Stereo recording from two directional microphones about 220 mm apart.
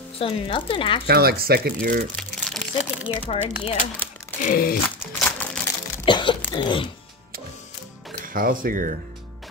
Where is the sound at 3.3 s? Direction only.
25° left (ahead or behind).